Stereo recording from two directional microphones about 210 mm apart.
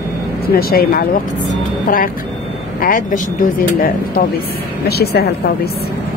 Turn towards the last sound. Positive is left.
turn(degrees=50)  # may be behind; listen again after turning